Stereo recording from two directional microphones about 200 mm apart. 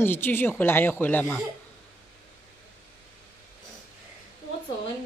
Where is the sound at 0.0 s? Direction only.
10° left (ahead or behind).